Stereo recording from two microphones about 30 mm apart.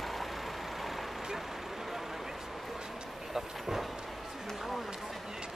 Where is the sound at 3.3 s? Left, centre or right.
Centre.